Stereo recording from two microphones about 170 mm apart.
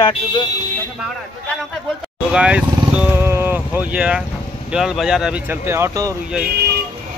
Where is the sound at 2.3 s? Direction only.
5° right (ahead or behind).